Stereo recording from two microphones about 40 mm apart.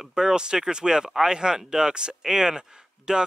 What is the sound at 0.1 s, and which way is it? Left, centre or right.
Speech, centre.